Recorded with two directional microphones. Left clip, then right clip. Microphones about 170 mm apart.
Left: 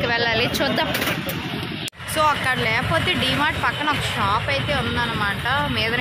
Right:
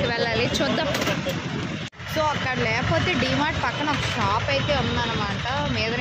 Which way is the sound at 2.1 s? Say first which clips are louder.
Left 4 dB; 10° right (ahead or behind).